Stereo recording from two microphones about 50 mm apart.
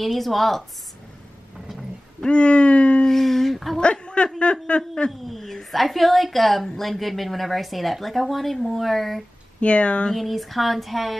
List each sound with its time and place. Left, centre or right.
0.0 s a woman's voice: centre
2.2 s speech: left
3.1 s a sound: centre
3.8 s a man's voice: left
5.1 s a woman's voice: centre
9.6 s speech: left
10.1 s a woman's voice: centre